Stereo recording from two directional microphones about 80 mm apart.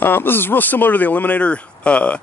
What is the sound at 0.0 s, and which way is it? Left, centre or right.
Speech, left.